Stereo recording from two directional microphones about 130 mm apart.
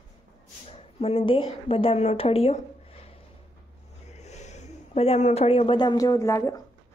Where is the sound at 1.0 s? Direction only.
45° left (ahead or behind).